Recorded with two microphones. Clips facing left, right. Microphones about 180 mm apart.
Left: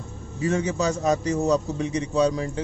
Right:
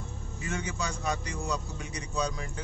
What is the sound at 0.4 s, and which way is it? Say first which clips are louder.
Speech: left 11 dB; 35° left (ahead or behind).